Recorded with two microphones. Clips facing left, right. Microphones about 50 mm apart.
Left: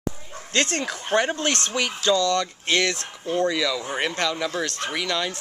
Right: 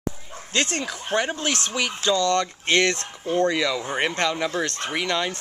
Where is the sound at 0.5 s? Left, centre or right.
Centre.